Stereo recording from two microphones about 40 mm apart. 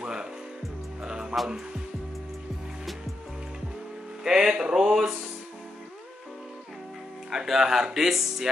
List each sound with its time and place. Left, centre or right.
0.0 s music: centre
4.2 s speech: centre
7.2 s speech: centre